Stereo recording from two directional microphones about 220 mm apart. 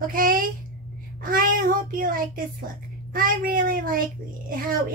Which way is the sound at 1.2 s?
40° right (ahead or behind).